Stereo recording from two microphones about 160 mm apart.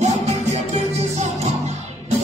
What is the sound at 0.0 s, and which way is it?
Music, 45° right (ahead or behind).